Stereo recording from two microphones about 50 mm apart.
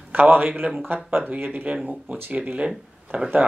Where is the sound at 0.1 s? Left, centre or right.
Right.